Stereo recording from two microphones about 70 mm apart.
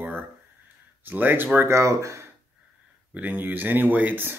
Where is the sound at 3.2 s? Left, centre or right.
Right.